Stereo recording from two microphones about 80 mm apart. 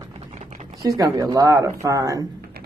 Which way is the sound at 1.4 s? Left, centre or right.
Right.